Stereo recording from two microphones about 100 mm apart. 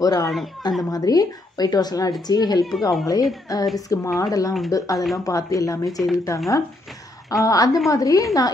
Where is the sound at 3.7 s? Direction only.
35° left (ahead or behind).